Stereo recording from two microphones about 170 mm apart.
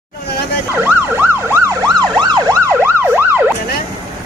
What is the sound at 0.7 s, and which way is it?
Emergency vehicle, 10° right (ahead or behind).